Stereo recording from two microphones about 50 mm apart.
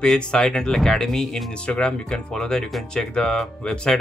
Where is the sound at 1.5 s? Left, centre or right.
Left.